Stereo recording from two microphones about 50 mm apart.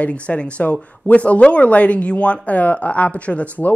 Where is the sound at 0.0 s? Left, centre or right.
Left.